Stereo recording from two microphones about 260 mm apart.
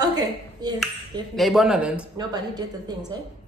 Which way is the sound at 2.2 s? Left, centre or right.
Centre.